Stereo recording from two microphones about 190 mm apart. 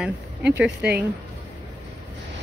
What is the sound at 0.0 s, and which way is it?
Speech, 10° right (ahead or behind).